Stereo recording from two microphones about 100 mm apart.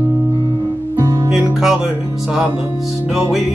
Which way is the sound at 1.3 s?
5° right (ahead or behind).